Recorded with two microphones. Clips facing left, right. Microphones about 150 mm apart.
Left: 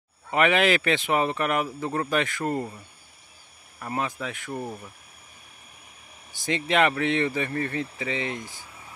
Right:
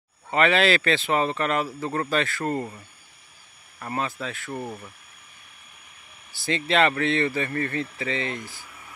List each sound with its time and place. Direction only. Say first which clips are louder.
0.3 s speech: right 1 dB; 15° left (ahead or behind)
3.8 s speech: even; 10° left (ahead or behind)
4.5 s speech: even; centre (ahead or behind)
6.3 s speech: right 1 dB; 15° left (ahead or behind)